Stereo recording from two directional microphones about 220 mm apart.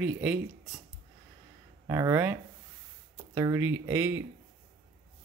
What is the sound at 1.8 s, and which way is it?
Speech, 15° right (ahead or behind).